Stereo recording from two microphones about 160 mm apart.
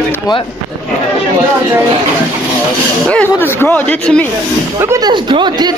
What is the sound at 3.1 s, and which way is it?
Speech, 10° left (ahead or behind).